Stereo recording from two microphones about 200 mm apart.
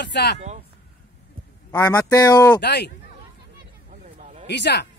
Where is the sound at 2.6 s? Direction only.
60° left (ahead or behind).